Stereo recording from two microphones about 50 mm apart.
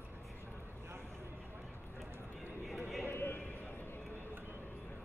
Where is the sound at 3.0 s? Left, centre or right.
Left.